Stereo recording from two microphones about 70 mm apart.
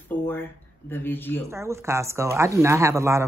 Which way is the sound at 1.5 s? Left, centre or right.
Right.